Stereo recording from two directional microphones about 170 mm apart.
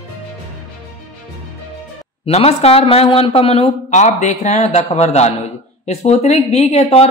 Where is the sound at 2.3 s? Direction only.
40° left (ahead or behind).